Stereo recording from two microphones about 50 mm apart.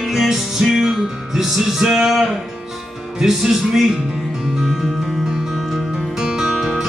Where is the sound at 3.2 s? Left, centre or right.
Centre.